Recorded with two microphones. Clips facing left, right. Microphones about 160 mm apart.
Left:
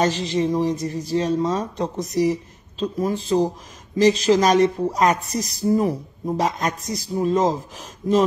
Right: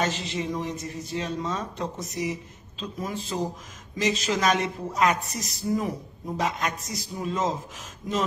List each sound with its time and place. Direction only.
0.0 s a woman's voice: 35° left (ahead or behind)